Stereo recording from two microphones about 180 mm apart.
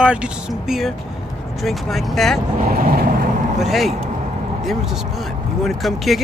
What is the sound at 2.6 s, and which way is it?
Vehicle, 55° right (ahead or behind).